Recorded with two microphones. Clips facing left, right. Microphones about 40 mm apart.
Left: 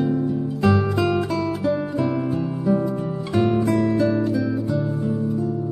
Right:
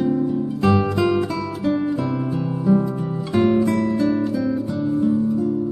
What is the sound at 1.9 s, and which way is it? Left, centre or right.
Music, centre.